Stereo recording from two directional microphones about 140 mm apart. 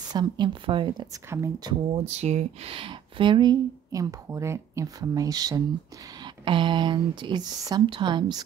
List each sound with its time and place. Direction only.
0.1 s speech: 35° right (ahead or behind)
1.1 s speech: 20° right (ahead or behind)
2.0 s speech: 50° right (ahead or behind); by 8.3 s 35° right (ahead or behind)